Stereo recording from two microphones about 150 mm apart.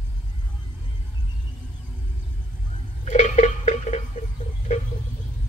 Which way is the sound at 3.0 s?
50° left (ahead or behind).